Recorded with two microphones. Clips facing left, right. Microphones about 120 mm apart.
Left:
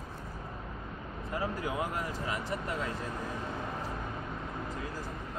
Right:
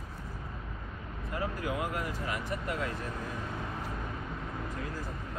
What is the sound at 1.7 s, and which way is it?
Speech, 25° left (ahead or behind).